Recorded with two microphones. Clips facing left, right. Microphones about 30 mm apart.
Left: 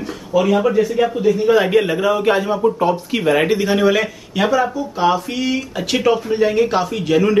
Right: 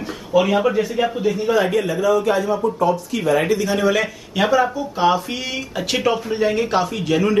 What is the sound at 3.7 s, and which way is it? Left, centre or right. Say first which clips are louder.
Speech: left 4 dB; centre.